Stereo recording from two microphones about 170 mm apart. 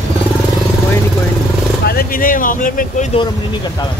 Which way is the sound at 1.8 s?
60° left (ahead or behind).